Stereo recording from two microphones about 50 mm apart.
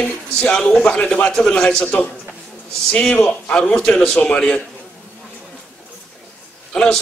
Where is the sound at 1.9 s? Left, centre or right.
Left.